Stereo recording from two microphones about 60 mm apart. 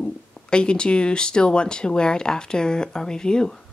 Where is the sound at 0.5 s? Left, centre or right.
Centre.